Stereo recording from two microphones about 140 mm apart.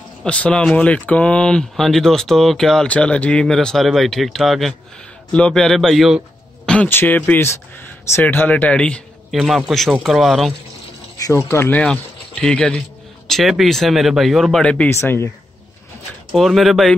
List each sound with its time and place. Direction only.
0.2 s speech: 5° left (ahead or behind)
9.4 s speech: 5° right (ahead or behind)
11.1 s speech: 20° left (ahead or behind)
11.8 s speech: 5° left (ahead or behind)
16.3 s speech: centre (ahead or behind)